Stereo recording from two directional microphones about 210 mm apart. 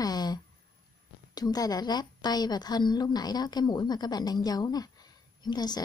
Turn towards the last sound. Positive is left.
turn(degrees=20)  # may be behind; listen again after turning